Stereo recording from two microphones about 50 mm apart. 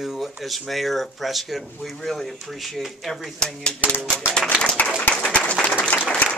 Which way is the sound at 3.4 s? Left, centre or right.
Centre.